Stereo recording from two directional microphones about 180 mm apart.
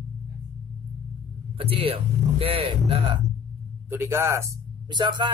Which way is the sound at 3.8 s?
15° right (ahead or behind).